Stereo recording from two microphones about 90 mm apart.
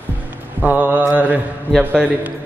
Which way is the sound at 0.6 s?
20° right (ahead or behind).